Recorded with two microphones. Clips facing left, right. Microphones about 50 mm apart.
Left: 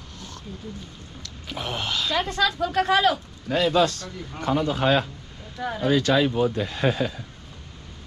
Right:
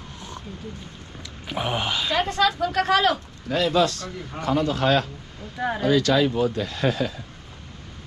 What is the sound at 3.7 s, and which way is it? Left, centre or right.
Speech, left.